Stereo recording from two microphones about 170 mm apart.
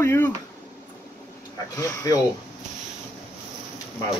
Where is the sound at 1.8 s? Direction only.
20° left (ahead or behind).